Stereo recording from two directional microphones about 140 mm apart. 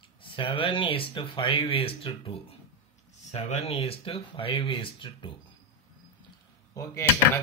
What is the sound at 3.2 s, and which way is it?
Speech, 50° left (ahead or behind).